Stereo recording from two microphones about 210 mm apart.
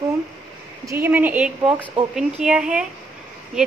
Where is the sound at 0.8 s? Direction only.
10° right (ahead or behind).